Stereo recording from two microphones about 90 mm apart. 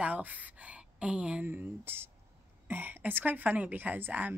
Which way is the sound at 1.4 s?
20° right (ahead or behind).